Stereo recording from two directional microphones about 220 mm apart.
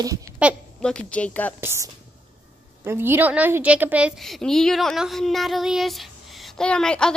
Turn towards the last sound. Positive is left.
turn(degrees=5)  # may be behind; listen again after turning